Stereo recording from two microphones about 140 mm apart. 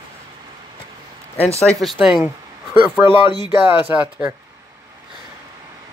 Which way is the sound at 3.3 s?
35° left (ahead or behind).